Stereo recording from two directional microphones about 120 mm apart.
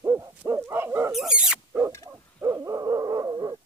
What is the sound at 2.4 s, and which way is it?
Dog, 25° right (ahead or behind).